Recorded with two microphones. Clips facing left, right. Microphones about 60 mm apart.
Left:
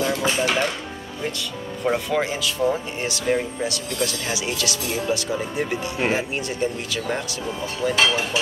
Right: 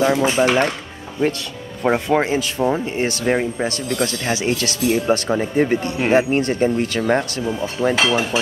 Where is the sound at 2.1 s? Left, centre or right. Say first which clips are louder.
Right 5 dB; right.